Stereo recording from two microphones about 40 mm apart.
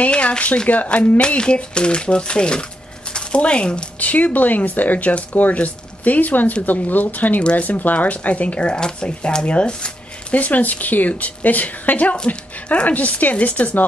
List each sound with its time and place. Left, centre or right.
0.0 s a woman's voice: left
1.2 s speech: left
4.0 s a woman's voice: left
10.3 s a woman's voice: left
12.3 s speech: left
12.8 s a woman's voice: left